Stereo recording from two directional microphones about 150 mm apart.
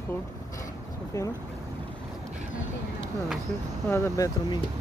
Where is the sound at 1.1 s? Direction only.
20° left (ahead or behind).